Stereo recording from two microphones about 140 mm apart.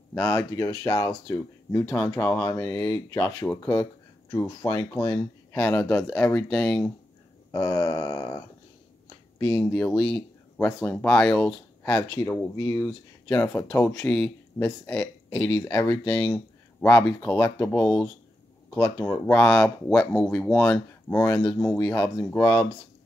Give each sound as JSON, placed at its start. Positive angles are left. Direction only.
{"t": 0.1, "sound": "speech", "side_deg": 20}
{"t": 7.5, "sound": "speech", "side_deg": 25}
{"t": 9.7, "sound": "speech", "side_deg": 10}
{"t": 12.8, "sound": "speech", "side_deg": 15}
{"t": 14.0, "sound": "speech", "side_deg": 5}
{"t": 14.6, "sound": "speech", "side_deg": 20}
{"t": 19.3, "sound": "speech", "side_deg": 10}
{"t": 21.1, "sound": "speech", "side_deg": 25}